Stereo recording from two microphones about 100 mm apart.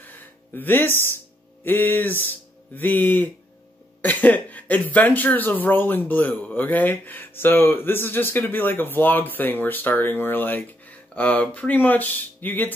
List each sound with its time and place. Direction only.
0.0 s music: 20° left (ahead or behind)
1.6 s speech: 20° left (ahead or behind)